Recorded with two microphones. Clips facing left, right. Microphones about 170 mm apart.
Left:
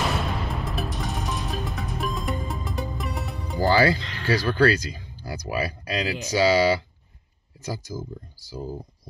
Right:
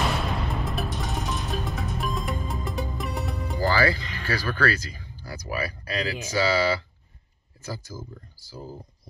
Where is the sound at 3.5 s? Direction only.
20° left (ahead or behind).